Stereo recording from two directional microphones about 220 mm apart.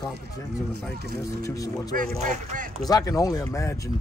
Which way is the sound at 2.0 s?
40° right (ahead or behind).